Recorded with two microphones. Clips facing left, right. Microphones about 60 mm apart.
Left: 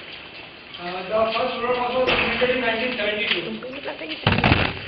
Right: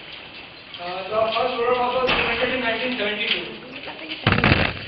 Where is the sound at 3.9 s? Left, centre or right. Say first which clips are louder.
Left 4 dB; left.